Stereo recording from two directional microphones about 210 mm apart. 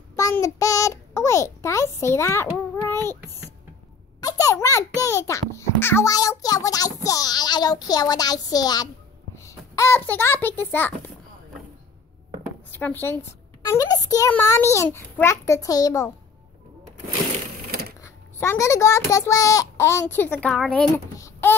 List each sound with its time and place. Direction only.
0.1 s a child's voice: 15° left (ahead or behind)
4.2 s a sound: 15° left (ahead or behind)
5.0 s a child's voice: 15° left (ahead or behind)
12.7 s a child's voice: 10° left (ahead or behind)
18.0 s a child's voice: 15° left (ahead or behind)
21.2 s a sound: 10° left (ahead or behind)